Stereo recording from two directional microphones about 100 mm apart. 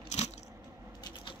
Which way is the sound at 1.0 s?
55° left (ahead or behind).